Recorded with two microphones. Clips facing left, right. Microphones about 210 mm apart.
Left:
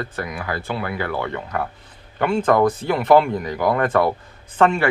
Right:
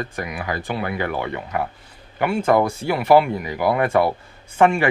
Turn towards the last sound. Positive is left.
turn(degrees=-15)  # may be behind; listen again after turning